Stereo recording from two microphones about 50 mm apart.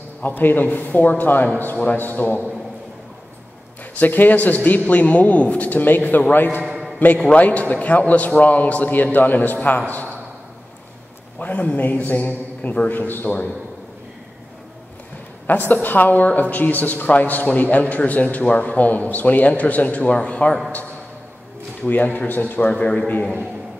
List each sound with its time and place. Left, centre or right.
0.2 s a woman's voice: left
4.0 s a woman's voice: left
11.3 s a man's voice: left
15.7 s a woman's voice: left
21.8 s a woman's voice: left
22.7 s a man's voice: left